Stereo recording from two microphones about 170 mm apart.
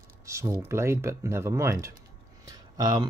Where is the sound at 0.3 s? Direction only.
15° right (ahead or behind).